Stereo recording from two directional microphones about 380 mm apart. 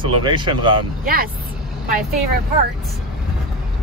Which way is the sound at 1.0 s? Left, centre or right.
Right.